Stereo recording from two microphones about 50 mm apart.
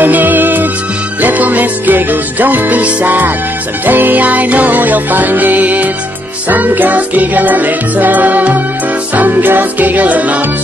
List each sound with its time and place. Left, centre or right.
0.0 s music: right